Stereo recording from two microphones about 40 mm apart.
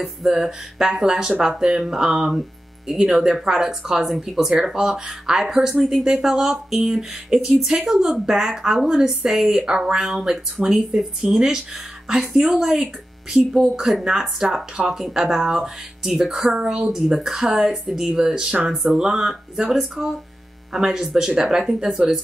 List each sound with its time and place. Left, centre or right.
0.3 s speech: centre
3.4 s speech: centre
18.7 s speech: centre
18.9 s speech: centre